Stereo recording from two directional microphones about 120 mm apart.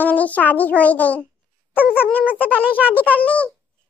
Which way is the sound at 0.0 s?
15° left (ahead or behind).